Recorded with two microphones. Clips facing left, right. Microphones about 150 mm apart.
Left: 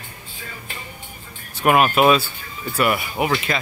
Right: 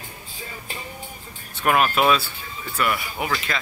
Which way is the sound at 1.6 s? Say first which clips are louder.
Left 4 dB; 10° left (ahead or behind).